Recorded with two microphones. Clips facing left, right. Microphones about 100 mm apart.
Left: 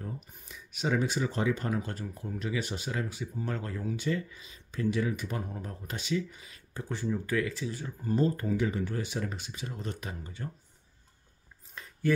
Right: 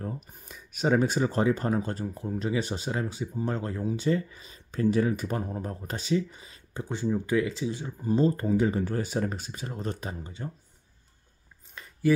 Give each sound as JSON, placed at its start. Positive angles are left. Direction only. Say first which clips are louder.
{"t": 0.0, "sound": "speech", "louder": "right 5 dB", "side_deg": -45}
{"t": 8.3, "sound": "speech", "louder": "right 5 dB", "side_deg": -30}
{"t": 12.0, "sound": "a sound", "louder": "right 4 dB", "side_deg": -5}